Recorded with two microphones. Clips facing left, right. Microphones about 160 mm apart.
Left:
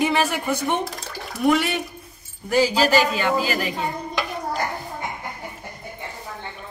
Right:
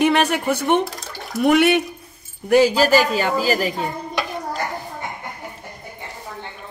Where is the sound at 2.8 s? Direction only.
40° right (ahead or behind).